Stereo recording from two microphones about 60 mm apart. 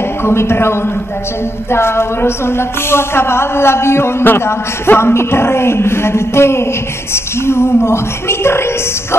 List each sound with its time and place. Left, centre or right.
0.2 s a woman's voice: left